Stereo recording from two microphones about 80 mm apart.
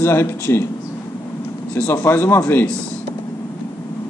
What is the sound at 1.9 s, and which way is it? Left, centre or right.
Speech, left.